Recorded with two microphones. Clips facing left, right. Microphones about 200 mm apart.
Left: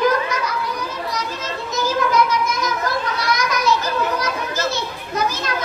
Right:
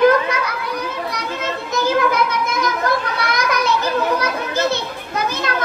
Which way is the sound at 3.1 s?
60° right (ahead or behind).